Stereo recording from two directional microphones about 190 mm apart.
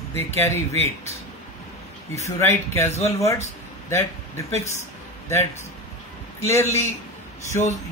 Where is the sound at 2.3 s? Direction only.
15° left (ahead or behind).